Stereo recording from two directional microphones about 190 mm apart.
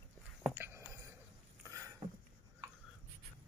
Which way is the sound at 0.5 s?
10° right (ahead or behind).